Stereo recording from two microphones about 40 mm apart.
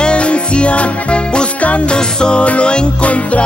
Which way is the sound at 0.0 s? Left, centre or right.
Left.